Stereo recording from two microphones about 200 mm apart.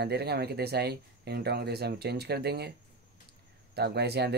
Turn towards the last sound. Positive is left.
turn(degrees=-55)  # may be behind; listen again after turning